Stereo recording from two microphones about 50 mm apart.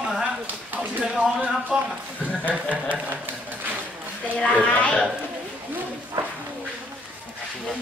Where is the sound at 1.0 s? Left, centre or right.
Right.